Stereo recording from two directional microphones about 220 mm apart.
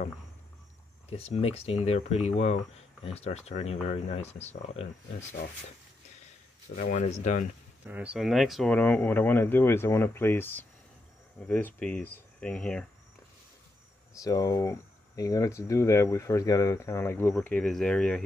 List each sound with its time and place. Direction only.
1.1 s speech: 30° left (ahead or behind)
6.7 s speech: 35° left (ahead or behind)
7.8 s speech: 5° right (ahead or behind)
14.1 s speech: 15° left (ahead or behind)